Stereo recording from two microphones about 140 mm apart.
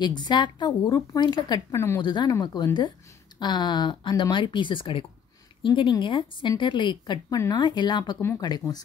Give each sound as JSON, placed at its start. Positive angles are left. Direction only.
{"t": 0.0, "sound": "speech", "side_deg": 30}